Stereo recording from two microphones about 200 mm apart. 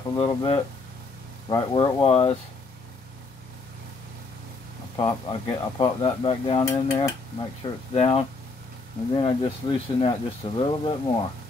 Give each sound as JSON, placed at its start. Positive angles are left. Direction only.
{"t": 0.1, "sound": "speech", "side_deg": 25}
{"t": 4.9, "sound": "speech", "side_deg": 25}
{"t": 7.6, "sound": "speech", "side_deg": 30}